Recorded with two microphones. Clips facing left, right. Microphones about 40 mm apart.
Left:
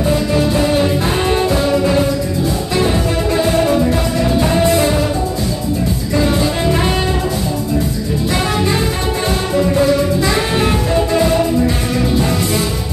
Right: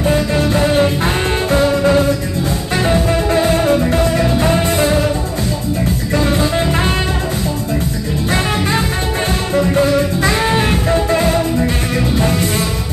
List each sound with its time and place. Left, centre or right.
0.3 s music: right
3.4 s music: right
6.6 s music: right
9.5 s music: right